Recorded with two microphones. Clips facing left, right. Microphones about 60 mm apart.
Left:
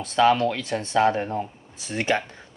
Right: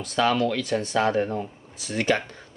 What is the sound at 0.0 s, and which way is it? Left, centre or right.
Speech, left.